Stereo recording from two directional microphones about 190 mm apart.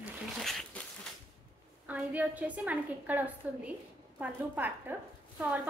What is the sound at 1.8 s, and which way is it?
A woman's voice, 10° right (ahead or behind).